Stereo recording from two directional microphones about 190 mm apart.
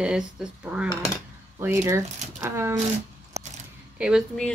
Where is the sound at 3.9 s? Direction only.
5° right (ahead or behind).